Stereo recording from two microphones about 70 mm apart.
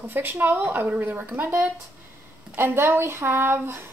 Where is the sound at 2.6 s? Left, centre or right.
Right.